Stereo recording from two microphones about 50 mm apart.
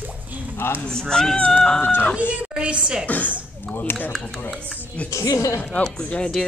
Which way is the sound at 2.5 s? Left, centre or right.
Right.